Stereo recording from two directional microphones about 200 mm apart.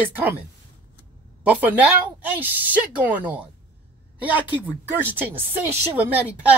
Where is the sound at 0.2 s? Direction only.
10° right (ahead or behind).